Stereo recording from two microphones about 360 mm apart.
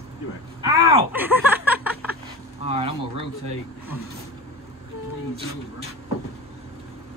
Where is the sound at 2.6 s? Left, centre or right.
Centre.